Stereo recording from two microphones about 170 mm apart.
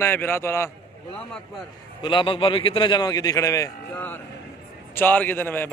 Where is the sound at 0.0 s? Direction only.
15° left (ahead or behind).